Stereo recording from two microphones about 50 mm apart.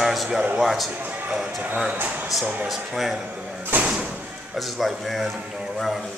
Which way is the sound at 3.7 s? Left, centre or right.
Right.